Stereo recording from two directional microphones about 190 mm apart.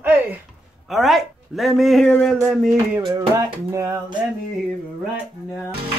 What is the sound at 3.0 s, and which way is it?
Music, 15° right (ahead or behind).